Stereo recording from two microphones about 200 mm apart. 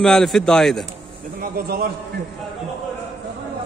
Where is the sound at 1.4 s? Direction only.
50° right (ahead or behind).